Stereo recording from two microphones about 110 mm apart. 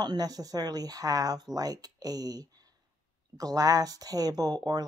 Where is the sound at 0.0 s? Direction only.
35° right (ahead or behind).